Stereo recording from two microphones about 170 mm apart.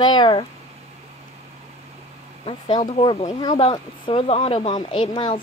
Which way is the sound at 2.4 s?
30° left (ahead or behind).